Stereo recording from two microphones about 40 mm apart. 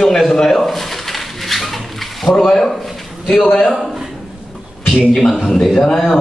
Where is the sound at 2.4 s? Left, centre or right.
Centre.